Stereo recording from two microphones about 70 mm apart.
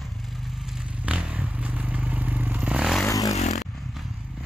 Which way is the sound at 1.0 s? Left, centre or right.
Centre.